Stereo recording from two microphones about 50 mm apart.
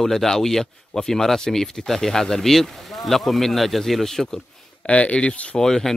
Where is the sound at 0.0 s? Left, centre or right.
Centre.